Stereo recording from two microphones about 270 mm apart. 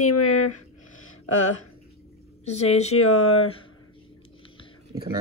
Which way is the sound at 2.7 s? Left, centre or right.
Left.